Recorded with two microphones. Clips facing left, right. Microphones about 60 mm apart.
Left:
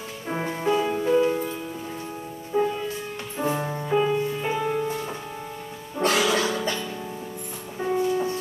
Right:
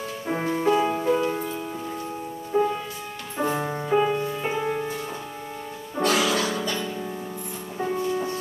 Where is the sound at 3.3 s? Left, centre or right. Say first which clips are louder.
Right 1 dB; centre.